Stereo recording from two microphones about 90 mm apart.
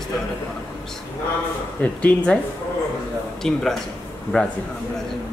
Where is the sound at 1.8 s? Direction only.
15° left (ahead or behind).